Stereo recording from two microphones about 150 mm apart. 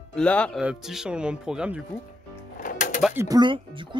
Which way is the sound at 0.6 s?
5° right (ahead or behind).